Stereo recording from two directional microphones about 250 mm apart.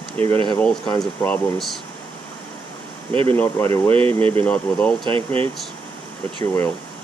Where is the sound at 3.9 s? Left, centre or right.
Right.